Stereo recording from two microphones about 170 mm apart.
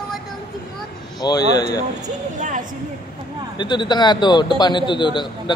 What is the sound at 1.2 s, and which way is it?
Speech, 25° left (ahead or behind).